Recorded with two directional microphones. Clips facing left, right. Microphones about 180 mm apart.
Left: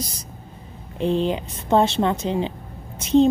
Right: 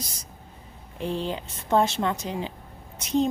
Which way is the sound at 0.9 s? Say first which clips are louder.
Left 8 dB; 20° left (ahead or behind).